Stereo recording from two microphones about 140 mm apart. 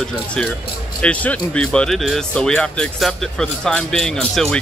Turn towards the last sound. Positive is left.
turn(degrees=5)  # may be behind; listen again after turning